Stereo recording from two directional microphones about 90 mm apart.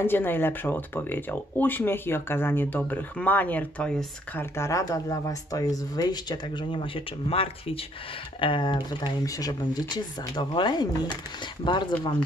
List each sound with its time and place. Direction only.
0.0 s speech: 25° left (ahead or behind)
4.4 s speech: 30° left (ahead or behind); by 7.8 s 90° left
8.4 s speech: 65° left (ahead or behind)
9.2 s speech: 45° left (ahead or behind); by 11.9 s 60° left (ahead or behind)